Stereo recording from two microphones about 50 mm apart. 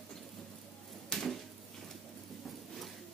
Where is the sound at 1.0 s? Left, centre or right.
Centre.